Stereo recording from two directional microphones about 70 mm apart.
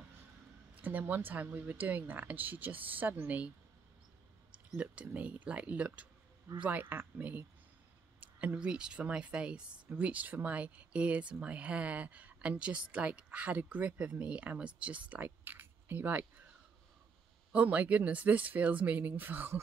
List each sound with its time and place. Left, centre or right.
0.7 s speech: right
4.7 s a woman's voice: centre
17.5 s speech: right